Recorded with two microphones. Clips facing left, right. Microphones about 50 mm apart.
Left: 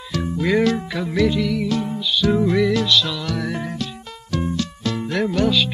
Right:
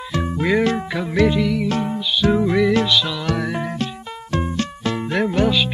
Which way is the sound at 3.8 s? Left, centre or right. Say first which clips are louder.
Right 4 dB; right.